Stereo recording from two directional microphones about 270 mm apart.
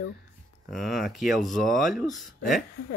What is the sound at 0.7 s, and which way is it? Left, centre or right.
Speech, centre.